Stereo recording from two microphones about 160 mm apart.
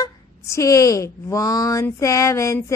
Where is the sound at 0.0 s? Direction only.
20° left (ahead or behind).